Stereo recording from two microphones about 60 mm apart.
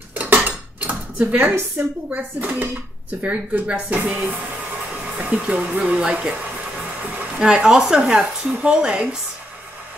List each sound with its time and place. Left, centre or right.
0.1 s dishes: right
2.0 s speech: right